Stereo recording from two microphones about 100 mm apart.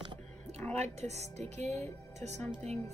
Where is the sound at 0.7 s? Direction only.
90° right.